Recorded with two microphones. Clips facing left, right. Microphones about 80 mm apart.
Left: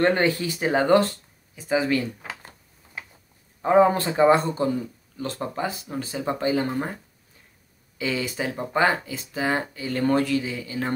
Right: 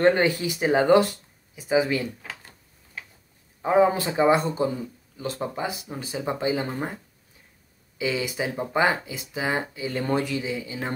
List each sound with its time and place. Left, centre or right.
0.2 s speech: centre
3.6 s speech: centre
8.0 s speech: centre